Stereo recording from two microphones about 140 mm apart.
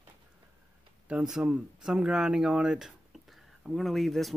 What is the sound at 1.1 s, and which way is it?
Speech, 5° right (ahead or behind).